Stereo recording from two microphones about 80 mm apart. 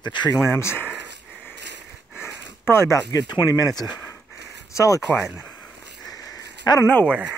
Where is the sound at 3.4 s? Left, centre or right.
Left.